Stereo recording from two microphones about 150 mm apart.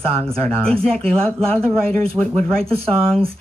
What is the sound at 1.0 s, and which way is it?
Speech, 40° right (ahead or behind).